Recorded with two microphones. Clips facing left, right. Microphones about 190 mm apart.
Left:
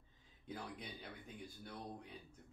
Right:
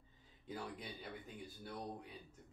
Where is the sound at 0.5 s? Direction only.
5° right (ahead or behind).